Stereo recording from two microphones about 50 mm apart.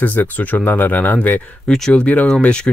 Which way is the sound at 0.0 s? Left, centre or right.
Left.